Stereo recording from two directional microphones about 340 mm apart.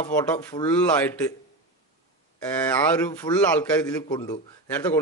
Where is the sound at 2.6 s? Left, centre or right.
Centre.